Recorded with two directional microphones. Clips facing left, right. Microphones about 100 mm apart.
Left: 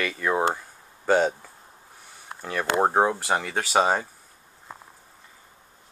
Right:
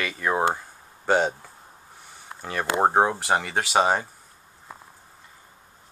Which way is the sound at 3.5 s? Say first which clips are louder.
Left 1 dB; 15° right (ahead or behind).